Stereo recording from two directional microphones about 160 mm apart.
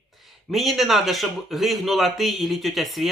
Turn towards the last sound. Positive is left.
turn(degrees=0)  # may be behind; listen again after turning